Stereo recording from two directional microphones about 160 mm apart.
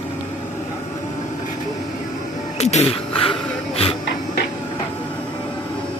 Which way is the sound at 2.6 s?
40° left (ahead or behind).